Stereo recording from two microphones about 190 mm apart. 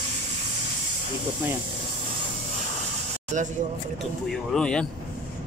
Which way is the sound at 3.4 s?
40° right (ahead or behind).